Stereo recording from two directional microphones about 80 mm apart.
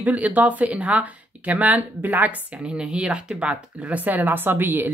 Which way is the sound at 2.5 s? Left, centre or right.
Centre.